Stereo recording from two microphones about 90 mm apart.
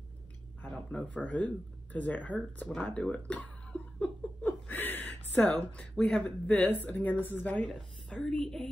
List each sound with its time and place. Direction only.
0.6 s speech: 15° left (ahead or behind)